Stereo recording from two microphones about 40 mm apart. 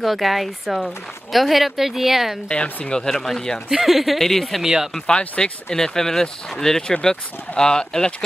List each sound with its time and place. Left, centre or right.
0.0 s speech: centre
2.5 s speech: left
3.1 s speech: centre
3.7 s speech: centre
4.9 s speech: centre